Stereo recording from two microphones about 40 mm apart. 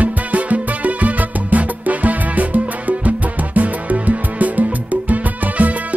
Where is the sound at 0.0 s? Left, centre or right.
Right.